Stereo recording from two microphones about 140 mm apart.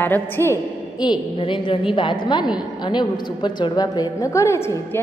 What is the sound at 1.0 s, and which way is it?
A woman's voice, 35° left (ahead or behind).